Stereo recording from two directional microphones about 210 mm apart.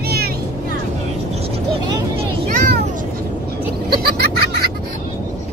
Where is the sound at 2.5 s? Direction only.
40° right (ahead or behind).